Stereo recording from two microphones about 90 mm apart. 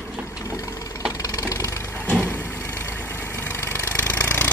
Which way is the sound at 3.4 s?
30° left (ahead or behind).